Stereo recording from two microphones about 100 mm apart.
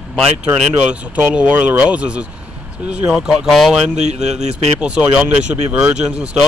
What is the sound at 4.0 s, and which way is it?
Speech, 90° right.